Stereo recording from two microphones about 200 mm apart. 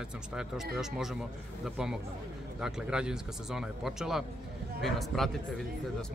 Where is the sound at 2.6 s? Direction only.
5° right (ahead or behind).